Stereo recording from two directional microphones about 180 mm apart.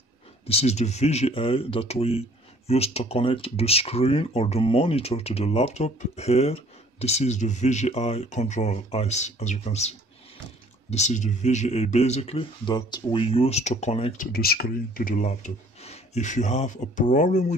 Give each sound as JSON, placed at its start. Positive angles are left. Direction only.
{"t": 0.5, "sound": "speech", "side_deg": 35}
{"t": 14.1, "sound": "speech", "side_deg": 50}